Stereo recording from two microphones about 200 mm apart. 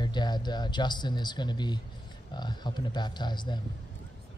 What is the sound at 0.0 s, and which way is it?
Speech, 20° left (ahead or behind).